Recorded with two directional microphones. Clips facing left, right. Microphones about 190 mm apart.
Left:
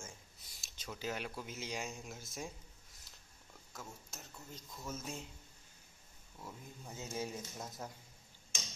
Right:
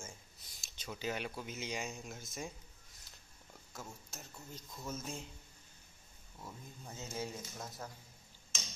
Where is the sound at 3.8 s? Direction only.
Centre (ahead or behind).